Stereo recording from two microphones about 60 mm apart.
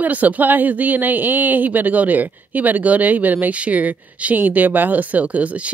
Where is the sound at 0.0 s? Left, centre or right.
Right.